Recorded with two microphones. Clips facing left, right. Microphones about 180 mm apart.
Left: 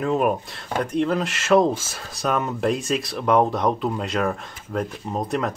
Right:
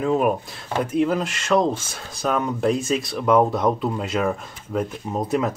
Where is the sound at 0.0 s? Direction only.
Centre (ahead or behind).